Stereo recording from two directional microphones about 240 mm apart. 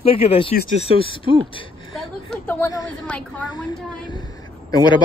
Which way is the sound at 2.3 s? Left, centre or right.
Centre.